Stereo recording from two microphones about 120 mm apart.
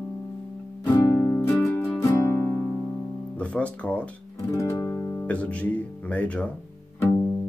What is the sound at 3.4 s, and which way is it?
Guitar, 10° left (ahead or behind).